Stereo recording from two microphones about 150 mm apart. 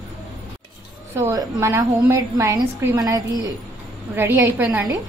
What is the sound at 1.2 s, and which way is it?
A woman's voice, 20° right (ahead or behind).